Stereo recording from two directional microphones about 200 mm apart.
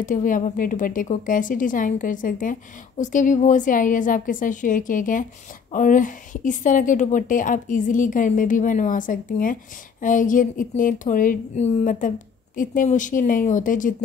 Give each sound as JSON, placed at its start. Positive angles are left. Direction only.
{"t": 0.0, "sound": "a woman's voice", "side_deg": 40}